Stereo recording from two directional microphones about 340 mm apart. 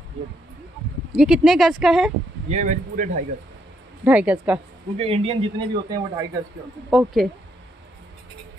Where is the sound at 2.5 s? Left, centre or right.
Right.